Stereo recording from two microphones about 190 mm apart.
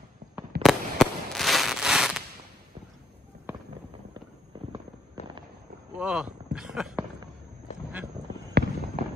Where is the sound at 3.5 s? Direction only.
10° right (ahead or behind).